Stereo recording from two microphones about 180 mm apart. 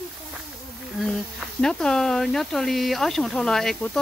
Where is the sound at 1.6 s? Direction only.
5° left (ahead or behind).